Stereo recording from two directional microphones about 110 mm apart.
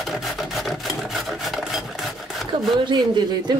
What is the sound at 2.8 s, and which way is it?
Speech, 40° right (ahead or behind).